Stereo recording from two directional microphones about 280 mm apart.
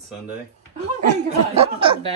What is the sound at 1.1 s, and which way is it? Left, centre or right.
Speech, right.